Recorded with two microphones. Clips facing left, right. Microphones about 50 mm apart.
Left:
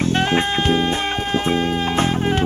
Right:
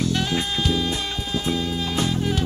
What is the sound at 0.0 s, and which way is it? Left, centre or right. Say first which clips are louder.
Music: left 6 dB; left.